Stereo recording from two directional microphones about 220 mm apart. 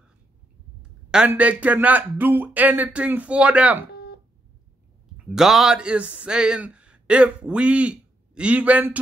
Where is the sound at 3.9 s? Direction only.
45° left (ahead or behind).